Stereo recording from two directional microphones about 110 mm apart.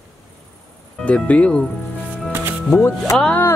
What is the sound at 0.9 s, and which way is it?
Speech, 10° left (ahead or behind).